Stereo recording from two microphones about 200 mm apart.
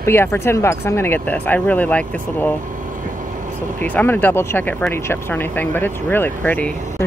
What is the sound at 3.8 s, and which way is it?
Speech, 10° left (ahead or behind).